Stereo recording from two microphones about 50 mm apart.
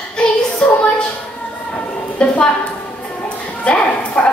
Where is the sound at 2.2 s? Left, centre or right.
Centre.